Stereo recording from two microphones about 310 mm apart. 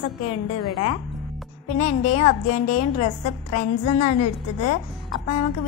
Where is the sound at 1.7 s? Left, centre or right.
Left.